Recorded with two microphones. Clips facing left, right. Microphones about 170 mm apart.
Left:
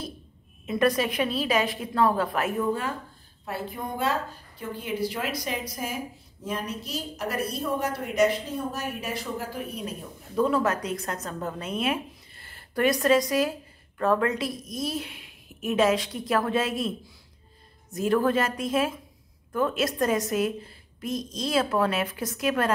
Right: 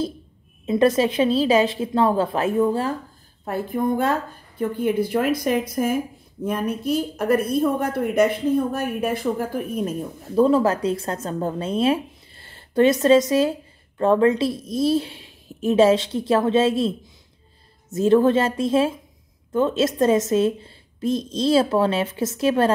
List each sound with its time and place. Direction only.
0.7 s a woman's voice: 25° right (ahead or behind)
3.4 s a woman's voice: 50° right (ahead or behind)
10.3 s speech: 30° right (ahead or behind)
17.9 s a woman's voice: 25° right (ahead or behind)